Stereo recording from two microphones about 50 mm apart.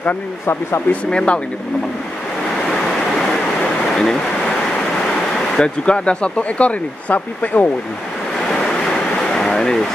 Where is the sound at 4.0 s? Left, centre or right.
Centre.